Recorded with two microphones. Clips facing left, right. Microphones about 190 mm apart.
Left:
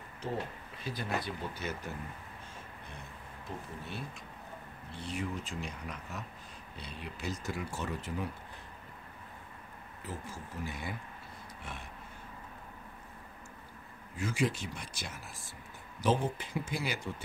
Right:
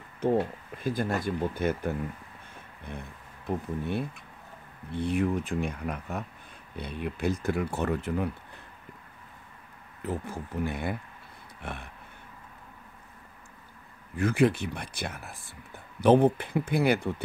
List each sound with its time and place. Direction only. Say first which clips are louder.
0.2 s speech: right 12 dB; 55° right (ahead or behind)
10.0 s speech: right 9 dB; 60° right (ahead or behind)
14.1 s speech: right 9 dB; 60° right (ahead or behind)